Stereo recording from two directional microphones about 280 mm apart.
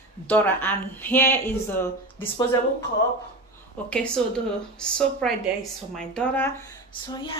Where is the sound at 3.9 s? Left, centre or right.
Centre.